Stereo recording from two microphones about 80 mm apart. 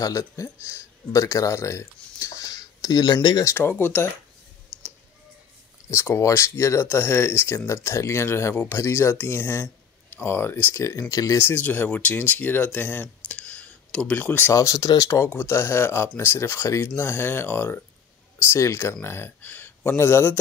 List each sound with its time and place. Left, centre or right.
0.0 s speech: left
3.4 s speech: left
5.9 s speech: left
11.4 s speech: left
13.3 s a sound: centre
14.5 s speech: left